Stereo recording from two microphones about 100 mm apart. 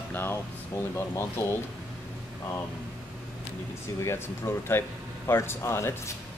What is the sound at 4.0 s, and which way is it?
Speech, 25° left (ahead or behind).